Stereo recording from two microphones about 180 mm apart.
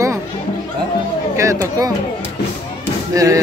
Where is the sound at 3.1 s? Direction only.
20° right (ahead or behind).